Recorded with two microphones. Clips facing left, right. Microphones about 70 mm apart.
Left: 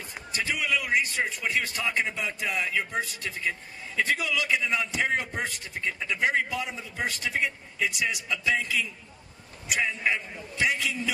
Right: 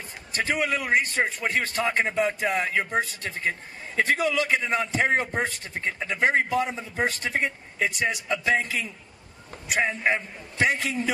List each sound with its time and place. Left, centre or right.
0.3 s a man's voice: right